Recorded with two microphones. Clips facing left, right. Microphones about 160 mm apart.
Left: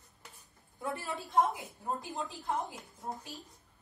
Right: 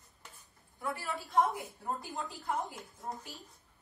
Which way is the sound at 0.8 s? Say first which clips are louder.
Even; 20° left (ahead or behind).